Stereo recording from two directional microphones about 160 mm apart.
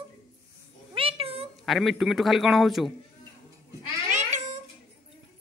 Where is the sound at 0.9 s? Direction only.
35° right (ahead or behind).